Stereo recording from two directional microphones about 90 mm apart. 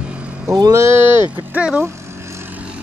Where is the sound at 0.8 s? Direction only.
25° right (ahead or behind).